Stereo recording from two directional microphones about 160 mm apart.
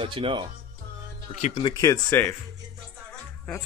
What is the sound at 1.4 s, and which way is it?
Speech, 45° left (ahead or behind).